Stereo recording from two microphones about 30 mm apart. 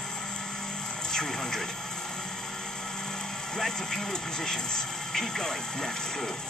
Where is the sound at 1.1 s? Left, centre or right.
Centre.